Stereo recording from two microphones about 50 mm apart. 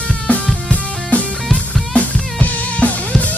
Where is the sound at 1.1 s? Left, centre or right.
Left.